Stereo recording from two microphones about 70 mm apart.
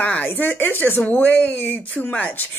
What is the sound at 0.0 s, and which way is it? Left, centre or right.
Speech, left.